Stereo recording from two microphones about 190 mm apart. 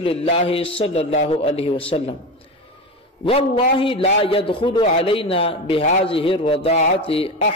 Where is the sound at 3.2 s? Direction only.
30° left (ahead or behind).